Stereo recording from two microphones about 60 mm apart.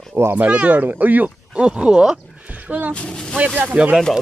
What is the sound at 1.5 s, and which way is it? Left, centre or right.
Speech, centre.